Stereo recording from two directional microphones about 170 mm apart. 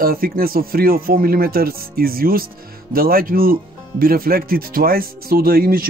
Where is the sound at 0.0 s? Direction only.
60° right (ahead or behind).